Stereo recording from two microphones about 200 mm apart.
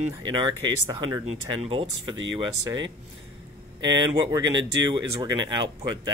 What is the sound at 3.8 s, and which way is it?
Speech, 20° right (ahead or behind).